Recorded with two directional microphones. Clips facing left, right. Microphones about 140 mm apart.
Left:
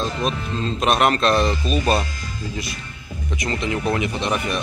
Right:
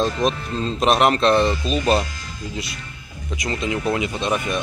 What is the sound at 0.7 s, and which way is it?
Speech, 30° right (ahead or behind).